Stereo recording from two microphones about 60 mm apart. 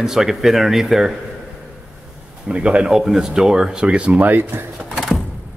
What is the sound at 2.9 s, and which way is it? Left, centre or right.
Speech, centre.